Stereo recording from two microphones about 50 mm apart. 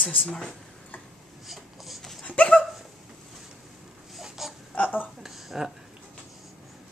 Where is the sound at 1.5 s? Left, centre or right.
Centre.